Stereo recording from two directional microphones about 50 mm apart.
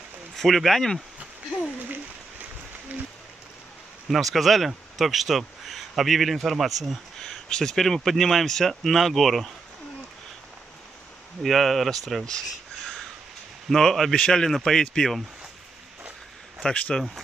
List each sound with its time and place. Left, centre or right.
0.4 s speech: centre
4.1 s speech: centre
11.4 s speech: centre
13.7 s speech: centre
16.6 s speech: centre